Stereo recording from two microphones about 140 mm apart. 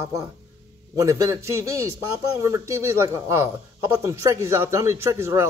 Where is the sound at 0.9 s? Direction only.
20° right (ahead or behind).